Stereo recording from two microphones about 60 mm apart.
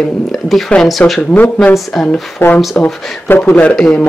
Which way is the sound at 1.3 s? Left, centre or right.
Left.